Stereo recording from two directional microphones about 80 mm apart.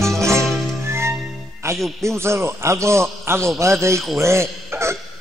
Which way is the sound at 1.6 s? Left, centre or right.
Right.